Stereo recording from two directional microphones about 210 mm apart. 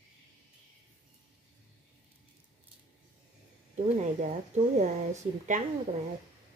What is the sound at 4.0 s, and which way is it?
Speech, 35° right (ahead or behind).